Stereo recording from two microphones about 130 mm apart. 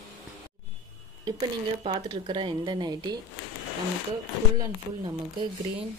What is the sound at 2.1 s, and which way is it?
A woman's voice, 40° right (ahead or behind).